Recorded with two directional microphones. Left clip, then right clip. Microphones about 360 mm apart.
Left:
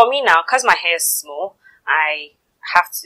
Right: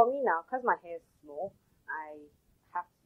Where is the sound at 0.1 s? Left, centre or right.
Centre.